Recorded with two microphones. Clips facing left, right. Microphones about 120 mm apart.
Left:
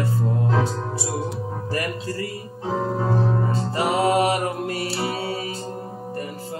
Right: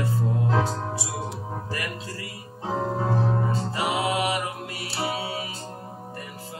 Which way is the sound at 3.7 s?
45° left (ahead or behind).